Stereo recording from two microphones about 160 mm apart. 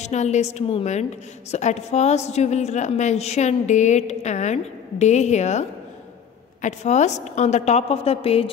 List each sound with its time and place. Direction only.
0.0 s a woman's voice: 45° left (ahead or behind)